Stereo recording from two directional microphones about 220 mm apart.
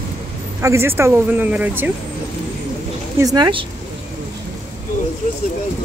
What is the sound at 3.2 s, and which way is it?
Speech, 15° right (ahead or behind).